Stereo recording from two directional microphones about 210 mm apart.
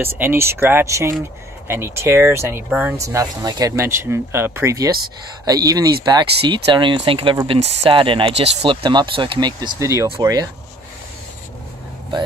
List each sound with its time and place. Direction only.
0.0 s speech: 10° right (ahead or behind)